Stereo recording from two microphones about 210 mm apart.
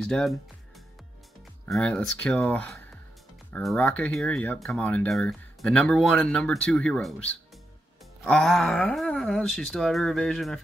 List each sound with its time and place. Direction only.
0.0 s speech: centre (ahead or behind)